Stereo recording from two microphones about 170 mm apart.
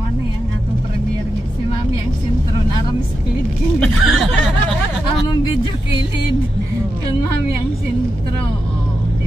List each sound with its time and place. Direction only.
3.8 s snicker: centre (ahead or behind)